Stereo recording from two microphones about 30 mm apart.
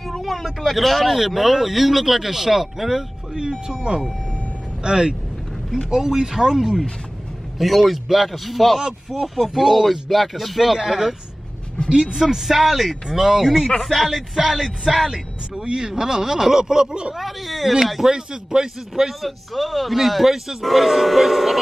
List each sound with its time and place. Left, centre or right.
0.2 s speech: centre
3.3 s a sound: right
5.9 s speech: centre
7.5 s speech: centre
8.7 s speech: centre
9.8 s speech: centre
10.9 s speech: centre
13.7 s speech: centre
14.9 s speech: centre
15.6 s speech: right
16.0 s a sound: right
17.2 s speech: centre
18.0 s a sound: right
18.9 s speech: centre